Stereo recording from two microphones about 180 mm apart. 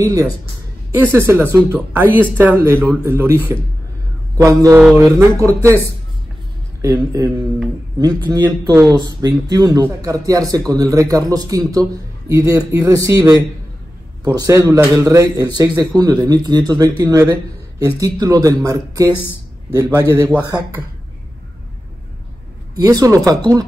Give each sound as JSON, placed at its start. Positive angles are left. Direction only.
{"t": 0.0, "sound": "a man's voice", "side_deg": -20}
{"t": 6.8, "sound": "a man's voice", "side_deg": -20}
{"t": 22.8, "sound": "a man's voice", "side_deg": -20}